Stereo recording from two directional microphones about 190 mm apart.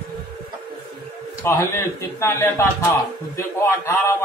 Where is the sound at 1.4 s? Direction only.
15° left (ahead or behind).